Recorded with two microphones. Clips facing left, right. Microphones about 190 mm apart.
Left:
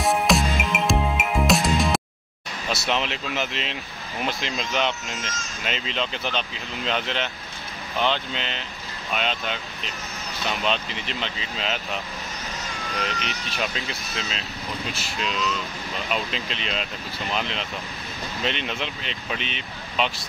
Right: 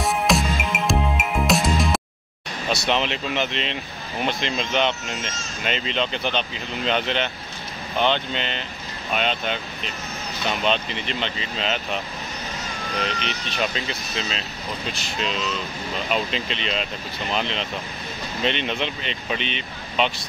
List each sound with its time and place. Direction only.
0.0 s music: centre (ahead or behind)
2.7 s speech: centre (ahead or behind)
12.6 s vehicle: 35° right (ahead or behind)
13.2 s speech: centre (ahead or behind)